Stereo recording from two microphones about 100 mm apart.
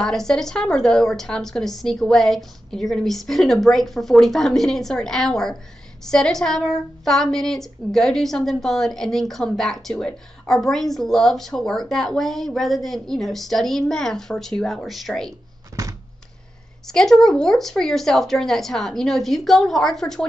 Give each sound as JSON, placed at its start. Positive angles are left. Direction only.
{"t": 0.0, "sound": "a woman's voice", "side_deg": 5}
{"t": 15.7, "sound": "a sound", "side_deg": -35}
{"t": 16.8, "sound": "a woman's voice", "side_deg": 5}